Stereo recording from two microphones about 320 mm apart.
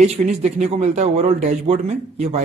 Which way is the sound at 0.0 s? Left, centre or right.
Right.